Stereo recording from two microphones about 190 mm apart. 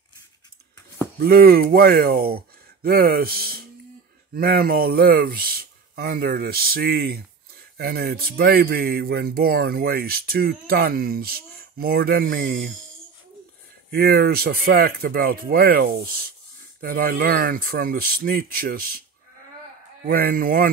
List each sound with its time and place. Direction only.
1.2 s speech: 55° right (ahead or behind)
13.8 s speech: 55° right (ahead or behind)
20.1 s speech: 50° right (ahead or behind)